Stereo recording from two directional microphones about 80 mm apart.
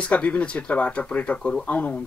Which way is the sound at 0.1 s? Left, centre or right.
Centre.